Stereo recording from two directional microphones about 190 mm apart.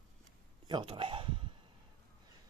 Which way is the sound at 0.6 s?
25° right (ahead or behind).